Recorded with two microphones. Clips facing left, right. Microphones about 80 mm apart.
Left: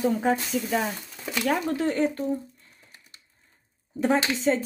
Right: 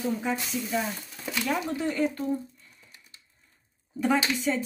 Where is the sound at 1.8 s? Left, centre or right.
Left.